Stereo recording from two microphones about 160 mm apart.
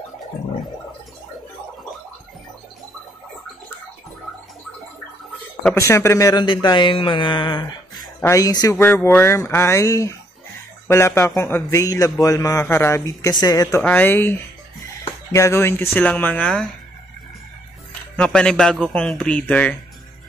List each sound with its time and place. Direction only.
5.8 s a man's voice: 20° left (ahead or behind)
8.8 s a man's voice: 10° left (ahead or behind)
18.1 s speech: 5° left (ahead or behind)